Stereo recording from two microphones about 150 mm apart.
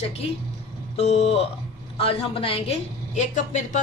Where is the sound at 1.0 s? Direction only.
45° left (ahead or behind).